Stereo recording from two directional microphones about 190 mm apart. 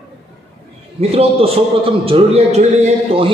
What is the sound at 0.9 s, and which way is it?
A man's voice, 30° right (ahead or behind).